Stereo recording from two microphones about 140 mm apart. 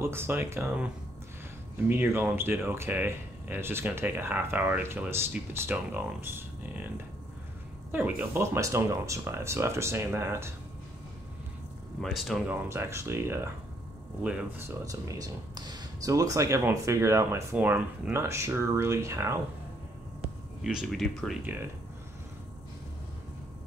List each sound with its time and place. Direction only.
0.0 s speech: 15° right (ahead or behind)
1.9 s speech: 15° right (ahead or behind)
8.2 s speech: 20° right (ahead or behind)
12.0 s speech: centre (ahead or behind)
12.4 s speech: 20° right (ahead or behind)
14.9 s speech: 25° right (ahead or behind)
20.6 s speech: centre (ahead or behind)